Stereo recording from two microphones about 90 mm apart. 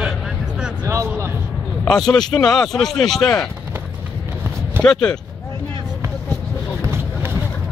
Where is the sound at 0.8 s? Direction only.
35° right (ahead or behind).